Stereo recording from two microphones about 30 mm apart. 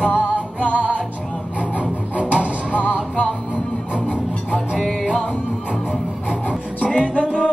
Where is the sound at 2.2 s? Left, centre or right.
Right.